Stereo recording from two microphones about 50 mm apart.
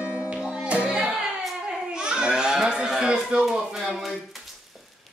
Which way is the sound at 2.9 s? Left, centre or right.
Centre.